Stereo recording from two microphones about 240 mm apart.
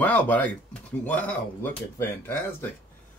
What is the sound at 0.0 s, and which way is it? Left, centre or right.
Speech, centre.